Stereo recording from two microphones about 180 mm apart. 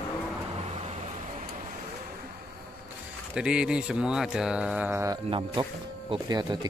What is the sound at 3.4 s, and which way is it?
Speech, 5° right (ahead or behind).